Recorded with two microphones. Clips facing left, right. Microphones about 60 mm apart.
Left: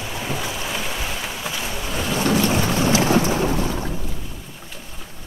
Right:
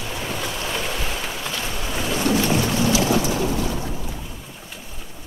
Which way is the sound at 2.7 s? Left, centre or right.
Left.